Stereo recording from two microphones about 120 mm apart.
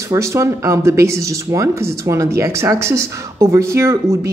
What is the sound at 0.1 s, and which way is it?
Speech, 25° right (ahead or behind).